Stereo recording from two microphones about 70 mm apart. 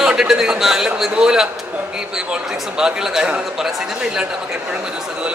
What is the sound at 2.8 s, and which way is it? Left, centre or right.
Speech, centre.